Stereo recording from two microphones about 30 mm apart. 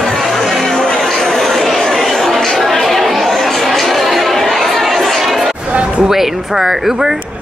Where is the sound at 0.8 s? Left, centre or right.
Centre.